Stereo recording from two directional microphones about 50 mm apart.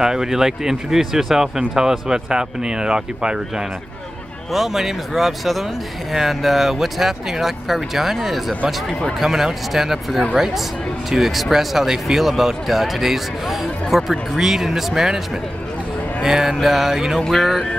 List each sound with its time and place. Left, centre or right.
0.0 s speech: centre
4.5 s speech: centre